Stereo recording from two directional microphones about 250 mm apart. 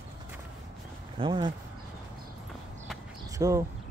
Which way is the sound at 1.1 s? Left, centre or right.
Centre.